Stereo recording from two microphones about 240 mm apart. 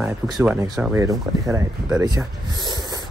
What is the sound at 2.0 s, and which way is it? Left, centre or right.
Speech, centre.